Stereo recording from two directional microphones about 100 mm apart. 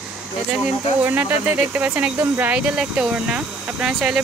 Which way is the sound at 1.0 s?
20° right (ahead or behind).